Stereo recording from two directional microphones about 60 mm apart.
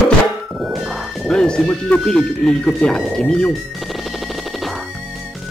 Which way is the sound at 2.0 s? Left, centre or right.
Centre.